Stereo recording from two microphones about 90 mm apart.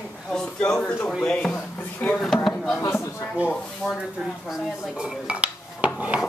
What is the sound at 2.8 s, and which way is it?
Speech, 30° left (ahead or behind).